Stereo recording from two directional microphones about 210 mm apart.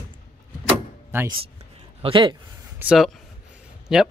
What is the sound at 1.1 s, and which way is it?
Speech, 10° right (ahead or behind).